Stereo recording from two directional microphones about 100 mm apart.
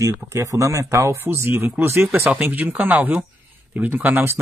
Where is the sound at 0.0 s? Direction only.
30° right (ahead or behind).